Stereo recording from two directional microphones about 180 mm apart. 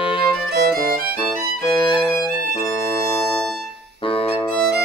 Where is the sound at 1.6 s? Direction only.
30° left (ahead or behind).